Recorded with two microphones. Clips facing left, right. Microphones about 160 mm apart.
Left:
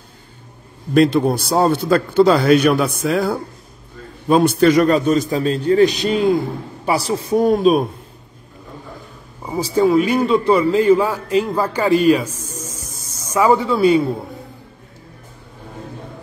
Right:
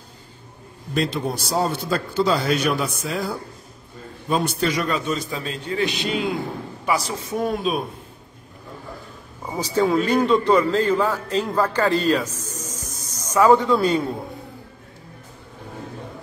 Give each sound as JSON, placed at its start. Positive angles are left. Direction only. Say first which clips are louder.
{"t": 0.9, "sound": "a man's voice", "louder": "left 10 dB", "side_deg": 60}
{"t": 9.8, "sound": "a man's voice", "louder": "left 4 dB", "side_deg": 10}